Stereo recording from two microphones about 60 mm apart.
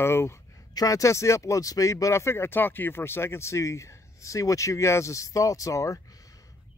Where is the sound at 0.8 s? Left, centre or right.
Left.